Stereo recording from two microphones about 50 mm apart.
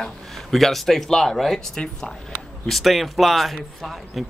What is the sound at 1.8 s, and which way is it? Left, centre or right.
Speech, left.